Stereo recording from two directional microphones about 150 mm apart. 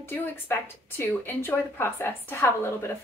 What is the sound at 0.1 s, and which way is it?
A woman's voice, 15° left (ahead or behind).